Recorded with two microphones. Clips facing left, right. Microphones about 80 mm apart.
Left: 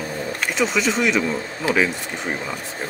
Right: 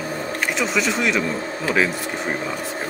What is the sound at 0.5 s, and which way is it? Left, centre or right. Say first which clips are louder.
Speech: left 3 dB; centre.